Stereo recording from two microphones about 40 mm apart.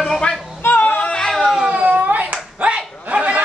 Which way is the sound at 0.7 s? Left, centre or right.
Left.